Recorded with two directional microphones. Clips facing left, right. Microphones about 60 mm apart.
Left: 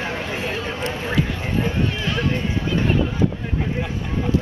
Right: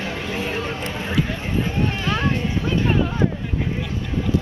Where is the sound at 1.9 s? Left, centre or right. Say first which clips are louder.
Right 1 dB; right.